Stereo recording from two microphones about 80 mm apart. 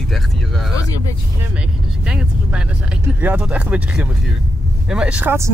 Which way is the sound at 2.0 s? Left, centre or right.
Centre.